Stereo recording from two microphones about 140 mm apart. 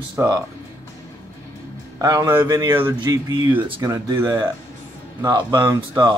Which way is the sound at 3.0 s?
30° right (ahead or behind).